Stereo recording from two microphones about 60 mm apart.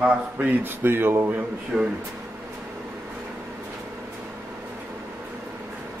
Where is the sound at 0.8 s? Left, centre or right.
Right.